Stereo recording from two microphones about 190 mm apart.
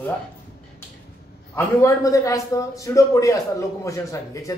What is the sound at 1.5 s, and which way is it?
A man's voice, 15° left (ahead or behind).